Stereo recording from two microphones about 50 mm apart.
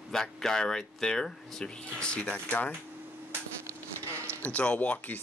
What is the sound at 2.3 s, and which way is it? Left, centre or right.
Speech, left.